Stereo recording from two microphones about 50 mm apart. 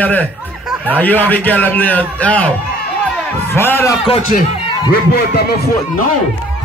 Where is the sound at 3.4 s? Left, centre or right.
Left.